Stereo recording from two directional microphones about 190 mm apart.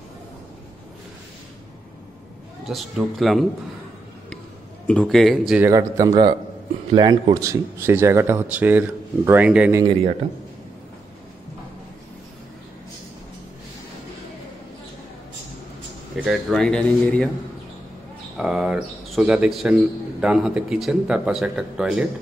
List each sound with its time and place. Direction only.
2.6 s a man's voice: centre (ahead or behind)
4.8 s a man's voice: 5° left (ahead or behind)
5.7 s speech: 15° right (ahead or behind)
16.2 s a man's voice: centre (ahead or behind)
18.4 s a man's voice: 5° right (ahead or behind)